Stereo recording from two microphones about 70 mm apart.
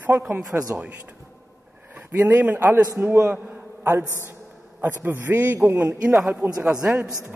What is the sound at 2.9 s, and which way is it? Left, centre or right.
Speech, right.